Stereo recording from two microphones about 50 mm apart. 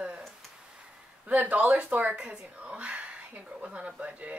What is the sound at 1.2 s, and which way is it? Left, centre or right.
A woman's voice, right.